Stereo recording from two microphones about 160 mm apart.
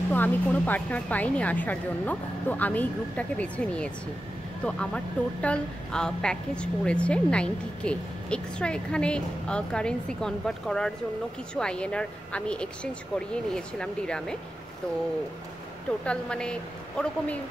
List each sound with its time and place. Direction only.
0.1 s a woman's voice: 10° left (ahead or behind)
16.0 s speech: 5° left (ahead or behind)